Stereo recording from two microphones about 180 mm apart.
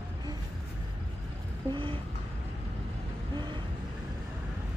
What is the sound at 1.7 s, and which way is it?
Music, 30° right (ahead or behind).